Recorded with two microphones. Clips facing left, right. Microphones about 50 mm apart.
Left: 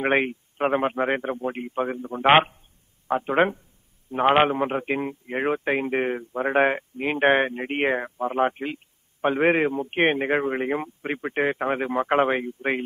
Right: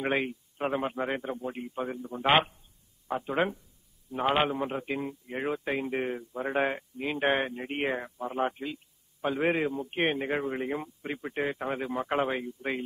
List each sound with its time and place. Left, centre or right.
0.0 s a man's voice: left